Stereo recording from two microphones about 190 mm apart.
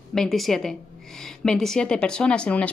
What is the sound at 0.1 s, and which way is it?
A woman's voice, centre (ahead or behind).